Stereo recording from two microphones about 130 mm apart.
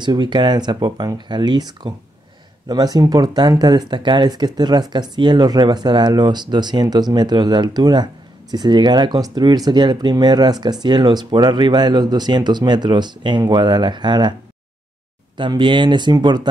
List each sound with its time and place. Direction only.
0.0 s speech: 35° right (ahead or behind)
15.3 s speech: 40° right (ahead or behind)